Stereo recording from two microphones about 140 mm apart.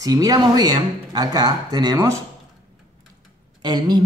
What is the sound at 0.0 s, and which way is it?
Speech, 25° right (ahead or behind).